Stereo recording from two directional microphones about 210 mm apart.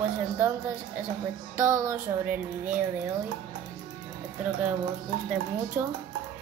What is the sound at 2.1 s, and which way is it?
Speech, 10° right (ahead or behind).